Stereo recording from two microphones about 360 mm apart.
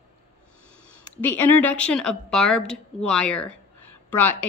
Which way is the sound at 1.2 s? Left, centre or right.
Centre.